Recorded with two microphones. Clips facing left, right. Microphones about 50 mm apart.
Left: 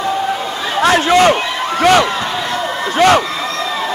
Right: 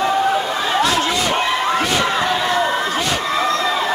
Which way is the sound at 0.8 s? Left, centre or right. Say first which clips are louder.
Left 8 dB; left.